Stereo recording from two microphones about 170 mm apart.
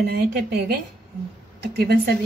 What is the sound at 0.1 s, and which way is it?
A woman's voice, 70° right (ahead or behind).